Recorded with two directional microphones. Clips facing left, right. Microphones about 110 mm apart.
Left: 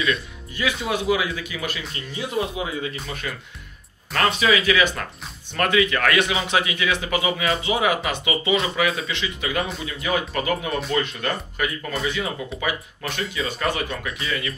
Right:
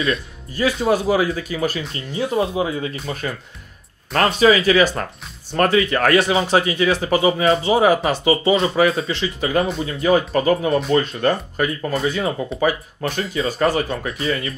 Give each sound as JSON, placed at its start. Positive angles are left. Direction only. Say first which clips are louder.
{"t": 0.0, "sound": "speech", "louder": "right 2 dB", "side_deg": -35}